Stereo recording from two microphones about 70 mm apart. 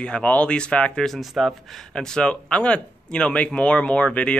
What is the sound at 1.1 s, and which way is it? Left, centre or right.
Speech, centre.